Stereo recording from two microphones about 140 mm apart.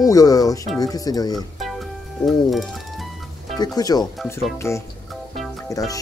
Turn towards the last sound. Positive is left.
turn(degrees=25)  # may be behind; listen again after turning